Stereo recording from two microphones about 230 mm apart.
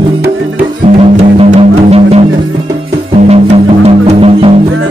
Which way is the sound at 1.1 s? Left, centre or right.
Right.